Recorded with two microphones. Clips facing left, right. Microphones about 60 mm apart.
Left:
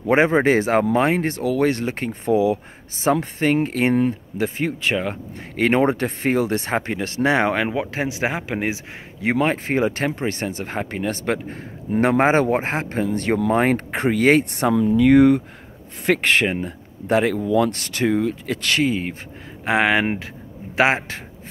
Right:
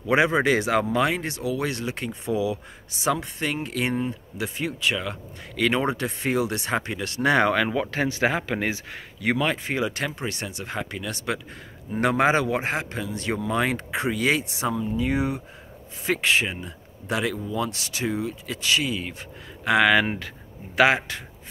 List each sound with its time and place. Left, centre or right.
0.0 s speech: left
14.8 s speech: left
19.6 s speech: left